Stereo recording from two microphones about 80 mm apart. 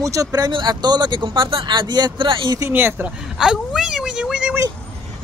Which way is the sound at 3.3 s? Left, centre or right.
Centre.